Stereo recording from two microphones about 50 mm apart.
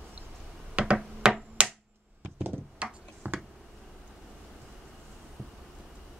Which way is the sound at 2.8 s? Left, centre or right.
Right.